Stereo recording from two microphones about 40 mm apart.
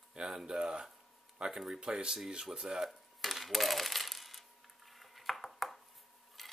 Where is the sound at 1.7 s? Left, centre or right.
Right.